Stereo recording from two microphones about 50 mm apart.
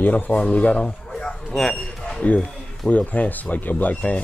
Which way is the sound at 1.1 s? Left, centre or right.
Centre.